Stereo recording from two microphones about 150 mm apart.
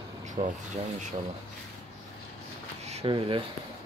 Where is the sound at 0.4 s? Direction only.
50° right (ahead or behind).